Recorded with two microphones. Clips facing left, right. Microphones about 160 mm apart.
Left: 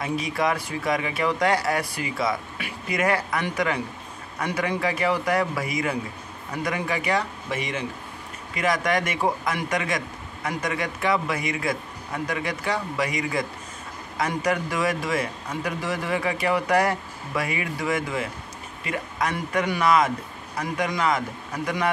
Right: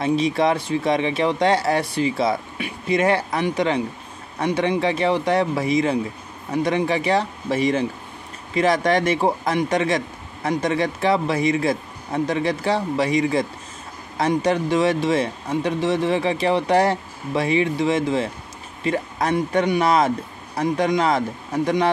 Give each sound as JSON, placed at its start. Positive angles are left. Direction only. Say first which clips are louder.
{"t": 0.0, "sound": "speech", "louder": "right 6 dB", "side_deg": -25}